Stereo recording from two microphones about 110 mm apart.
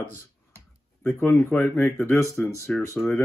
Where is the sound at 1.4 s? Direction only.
20° left (ahead or behind).